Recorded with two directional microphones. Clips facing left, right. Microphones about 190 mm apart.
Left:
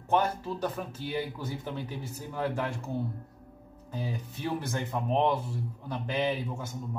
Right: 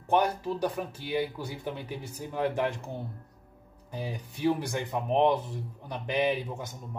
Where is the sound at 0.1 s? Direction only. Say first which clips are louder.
Right 2 dB; 15° right (ahead or behind).